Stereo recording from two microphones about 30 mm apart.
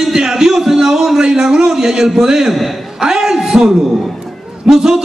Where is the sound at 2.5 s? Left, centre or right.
Centre.